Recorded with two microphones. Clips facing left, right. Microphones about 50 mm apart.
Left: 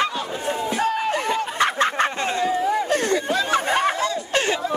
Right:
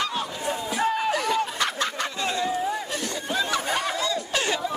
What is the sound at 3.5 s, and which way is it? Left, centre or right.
Chatter, left.